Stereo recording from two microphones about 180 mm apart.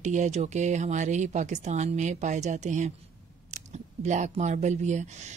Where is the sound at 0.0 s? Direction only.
40° right (ahead or behind).